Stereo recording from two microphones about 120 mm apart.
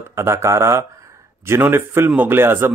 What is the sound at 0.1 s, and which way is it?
A man's voice, 20° right (ahead or behind).